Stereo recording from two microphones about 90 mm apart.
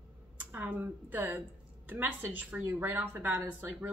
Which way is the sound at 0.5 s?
20° right (ahead or behind).